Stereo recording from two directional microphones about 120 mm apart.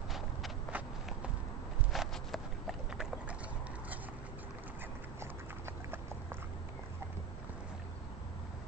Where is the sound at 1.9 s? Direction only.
Centre (ahead or behind).